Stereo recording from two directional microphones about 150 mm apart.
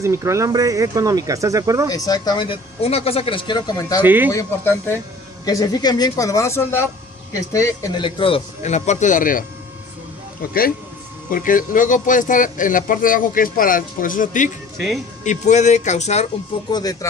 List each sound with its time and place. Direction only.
0.0 s speech: 20° right (ahead or behind)
1.9 s speech: 25° left (ahead or behind)
4.0 s speech: 15° right (ahead or behind)
4.3 s speech: 20° left (ahead or behind)
8.0 s speech: 35° left (ahead or behind)
8.6 s speech: 50° left (ahead or behind)
10.4 s speech: 70° left (ahead or behind); by 16.3 s 50° left (ahead or behind)
16.7 s speech: 25° left (ahead or behind)